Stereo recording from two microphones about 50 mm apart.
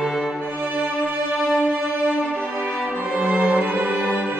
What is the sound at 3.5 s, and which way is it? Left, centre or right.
Music, right.